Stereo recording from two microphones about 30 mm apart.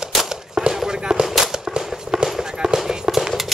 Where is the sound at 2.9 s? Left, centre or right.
Centre.